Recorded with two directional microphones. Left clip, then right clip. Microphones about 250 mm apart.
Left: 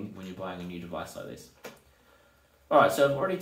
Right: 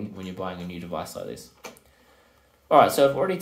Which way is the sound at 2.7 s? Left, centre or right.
Right.